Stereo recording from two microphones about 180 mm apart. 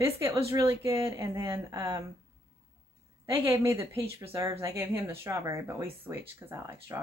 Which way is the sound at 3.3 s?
10° right (ahead or behind).